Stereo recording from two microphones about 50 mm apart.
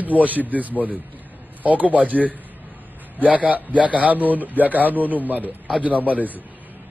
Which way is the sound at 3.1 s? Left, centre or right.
Right.